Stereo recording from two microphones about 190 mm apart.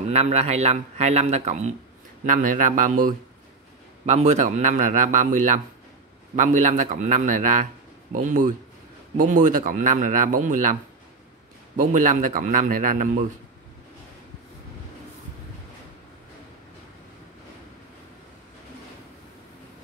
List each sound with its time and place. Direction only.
0.1 s a man's voice: 35° right (ahead or behind)